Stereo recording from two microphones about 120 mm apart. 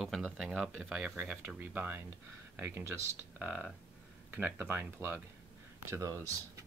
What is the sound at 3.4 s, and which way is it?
Speech, 10° right (ahead or behind).